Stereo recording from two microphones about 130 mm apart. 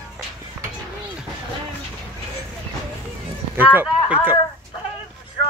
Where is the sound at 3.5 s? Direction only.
15° right (ahead or behind).